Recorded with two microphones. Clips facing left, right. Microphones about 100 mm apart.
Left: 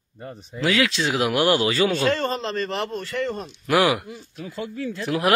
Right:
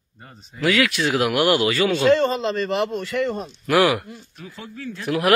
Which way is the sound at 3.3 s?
40° right (ahead or behind).